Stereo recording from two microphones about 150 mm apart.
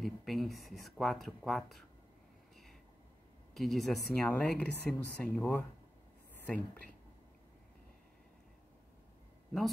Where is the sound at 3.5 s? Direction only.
Centre (ahead or behind).